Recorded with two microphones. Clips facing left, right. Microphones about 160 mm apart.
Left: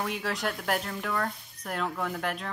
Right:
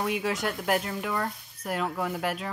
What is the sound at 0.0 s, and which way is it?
Speech, 5° right (ahead or behind).